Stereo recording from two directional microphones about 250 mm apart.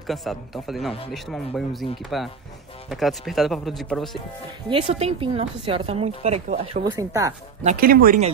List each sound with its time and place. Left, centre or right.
0.0 s speech: centre
4.6 s a woman's voice: right
7.6 s speech: right